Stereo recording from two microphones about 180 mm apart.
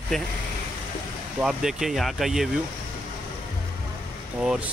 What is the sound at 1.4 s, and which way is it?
Speech, 5° right (ahead or behind).